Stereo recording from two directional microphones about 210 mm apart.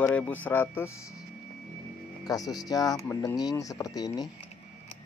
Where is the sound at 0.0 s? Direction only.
10° left (ahead or behind).